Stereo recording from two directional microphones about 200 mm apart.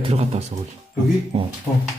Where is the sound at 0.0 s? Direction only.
30° right (ahead or behind).